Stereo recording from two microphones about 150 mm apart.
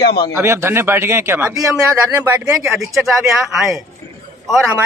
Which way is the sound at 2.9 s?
Centre (ahead or behind).